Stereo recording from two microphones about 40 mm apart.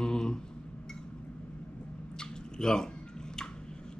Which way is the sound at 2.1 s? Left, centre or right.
Centre.